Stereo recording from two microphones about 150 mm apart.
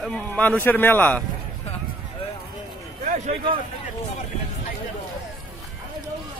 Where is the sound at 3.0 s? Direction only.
65° right (ahead or behind).